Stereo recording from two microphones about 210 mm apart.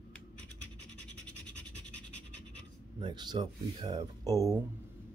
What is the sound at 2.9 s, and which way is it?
Speech, 20° right (ahead or behind).